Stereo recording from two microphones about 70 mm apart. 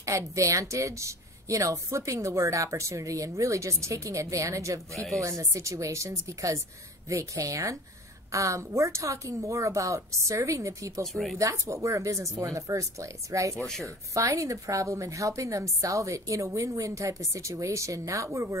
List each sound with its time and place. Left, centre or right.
0.0 s speech: right
4.9 s speech: centre
5.2 s speech: right
13.6 s speech: centre
13.8 s speech: right